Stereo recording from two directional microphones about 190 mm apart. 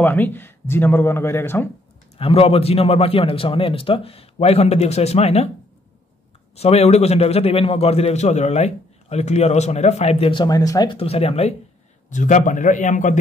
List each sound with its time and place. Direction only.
0.0 s speech: 10° left (ahead or behind)
2.1 s a man's voice: 30° left (ahead or behind)
6.5 s a man's voice: 35° left (ahead or behind)